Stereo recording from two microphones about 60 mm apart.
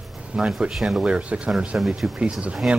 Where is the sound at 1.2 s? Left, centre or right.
Centre.